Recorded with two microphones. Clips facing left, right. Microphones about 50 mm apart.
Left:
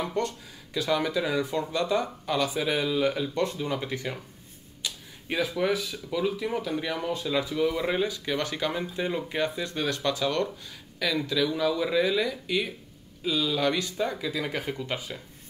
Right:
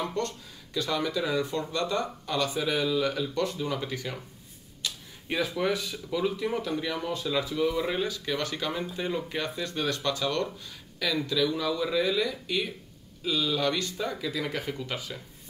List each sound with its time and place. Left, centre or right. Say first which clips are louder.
0.7 s speech: left 2 dB; centre
4.8 s speech: even; centre